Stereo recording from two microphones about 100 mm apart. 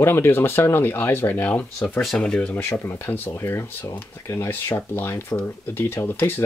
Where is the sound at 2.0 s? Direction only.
5° left (ahead or behind).